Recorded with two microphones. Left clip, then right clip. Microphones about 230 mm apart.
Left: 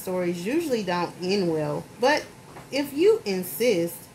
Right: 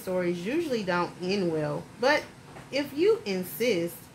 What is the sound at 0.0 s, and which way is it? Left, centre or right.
Speech, left.